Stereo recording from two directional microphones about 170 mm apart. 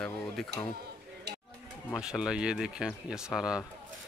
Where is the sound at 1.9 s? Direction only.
5° right (ahead or behind).